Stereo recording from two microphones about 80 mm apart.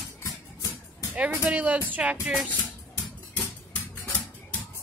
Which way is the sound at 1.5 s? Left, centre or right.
Centre.